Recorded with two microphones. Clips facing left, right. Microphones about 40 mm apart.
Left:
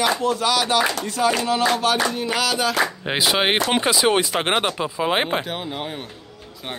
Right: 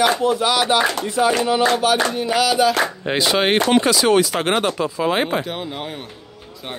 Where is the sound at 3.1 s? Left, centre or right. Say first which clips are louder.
Right 3 dB; centre.